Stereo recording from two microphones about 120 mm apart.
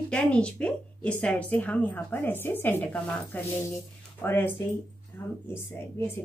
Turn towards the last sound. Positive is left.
turn(degrees=20)  # may be behind; listen again after turning